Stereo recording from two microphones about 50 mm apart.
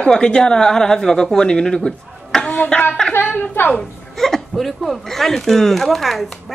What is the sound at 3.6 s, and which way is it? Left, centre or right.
Speech, left.